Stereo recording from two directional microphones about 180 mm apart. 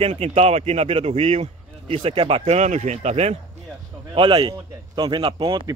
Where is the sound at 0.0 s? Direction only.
35° right (ahead or behind).